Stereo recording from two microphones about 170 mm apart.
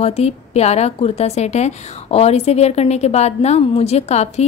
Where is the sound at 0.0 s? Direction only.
40° left (ahead or behind).